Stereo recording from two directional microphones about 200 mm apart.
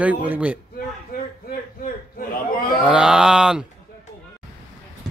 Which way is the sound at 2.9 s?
5° right (ahead or behind).